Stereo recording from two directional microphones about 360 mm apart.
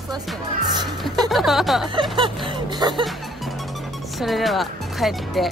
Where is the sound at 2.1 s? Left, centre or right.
Centre.